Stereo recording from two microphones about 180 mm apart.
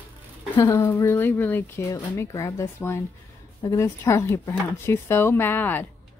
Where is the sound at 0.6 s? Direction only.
15° left (ahead or behind).